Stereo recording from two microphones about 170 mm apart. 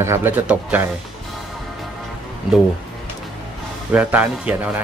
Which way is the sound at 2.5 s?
Centre (ahead or behind).